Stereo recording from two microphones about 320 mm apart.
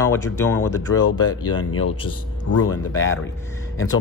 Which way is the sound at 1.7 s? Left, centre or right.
Left.